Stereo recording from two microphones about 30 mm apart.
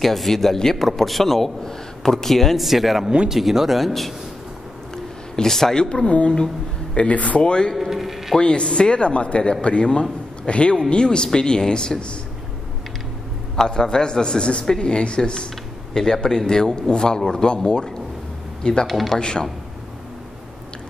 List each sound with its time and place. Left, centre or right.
0.0 s a man's voice: centre
0.8 s a man's voice: centre
4.9 s a sound: centre
7.0 s speech: left
7.4 s a woman's voice: left
7.7 s a sound: centre
8.4 s a woman's voice: left
13.6 s a man's voice: left
18.9 s speech: centre
19.1 s a man's voice: left